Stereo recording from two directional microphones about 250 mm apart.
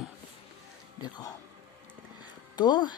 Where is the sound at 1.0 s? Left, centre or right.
Centre.